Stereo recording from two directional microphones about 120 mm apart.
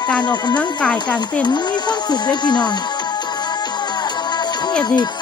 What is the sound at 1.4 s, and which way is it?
Music, 40° left (ahead or behind).